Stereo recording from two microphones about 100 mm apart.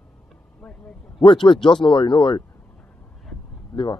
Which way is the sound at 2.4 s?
20° left (ahead or behind).